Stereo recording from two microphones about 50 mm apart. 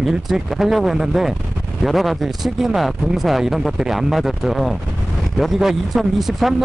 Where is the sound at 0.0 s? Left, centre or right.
Centre.